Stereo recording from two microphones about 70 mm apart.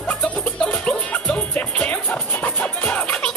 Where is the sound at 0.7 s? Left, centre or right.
Centre.